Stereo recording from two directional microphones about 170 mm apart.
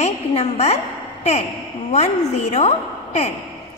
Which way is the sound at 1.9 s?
40° left (ahead or behind).